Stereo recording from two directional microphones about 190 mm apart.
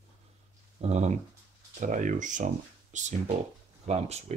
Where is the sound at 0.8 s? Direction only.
35° right (ahead or behind).